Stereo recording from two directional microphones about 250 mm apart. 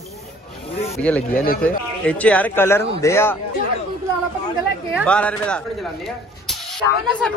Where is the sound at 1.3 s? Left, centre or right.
Left.